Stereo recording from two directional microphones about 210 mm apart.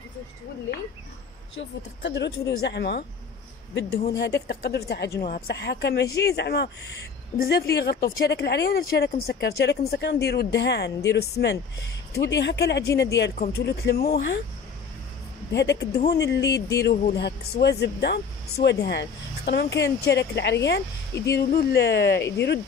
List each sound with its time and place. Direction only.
1.6 s speech: 55° left (ahead or behind)
4.2 s speech: 50° left (ahead or behind)
15.5 s speech: 55° left (ahead or behind)
16.4 s speech: 15° left (ahead or behind)
16.9 s speech: 40° left (ahead or behind)
17.2 s speech: 50° left (ahead or behind)